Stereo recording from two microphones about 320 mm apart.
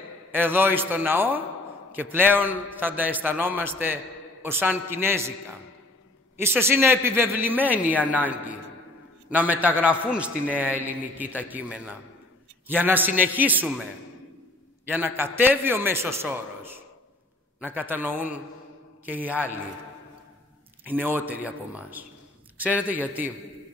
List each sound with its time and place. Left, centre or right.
0.3 s a man's voice: centre
6.3 s a man's voice: centre
14.9 s a man's voice: centre
20.8 s a man's voice: centre